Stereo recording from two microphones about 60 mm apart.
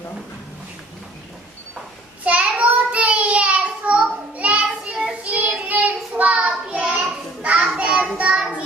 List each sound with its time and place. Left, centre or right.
2.2 s child singing: right
6.8 s a sound: centre
8.2 s child singing: centre